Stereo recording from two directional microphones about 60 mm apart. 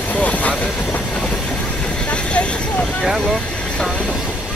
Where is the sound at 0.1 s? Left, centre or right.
Left.